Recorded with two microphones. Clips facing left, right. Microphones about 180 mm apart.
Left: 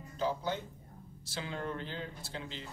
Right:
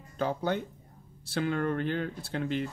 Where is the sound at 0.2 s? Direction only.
60° right (ahead or behind).